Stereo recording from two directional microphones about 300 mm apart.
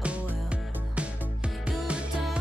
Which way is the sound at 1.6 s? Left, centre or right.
Centre.